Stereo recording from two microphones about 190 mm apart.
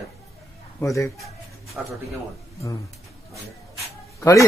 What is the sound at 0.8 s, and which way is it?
Speech, 15° left (ahead or behind).